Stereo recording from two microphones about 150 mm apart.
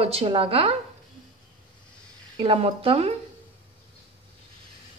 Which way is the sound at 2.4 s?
40° right (ahead or behind).